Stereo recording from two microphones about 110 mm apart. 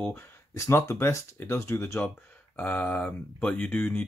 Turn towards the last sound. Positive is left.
turn(degrees=15)  # may be behind; listen again after turning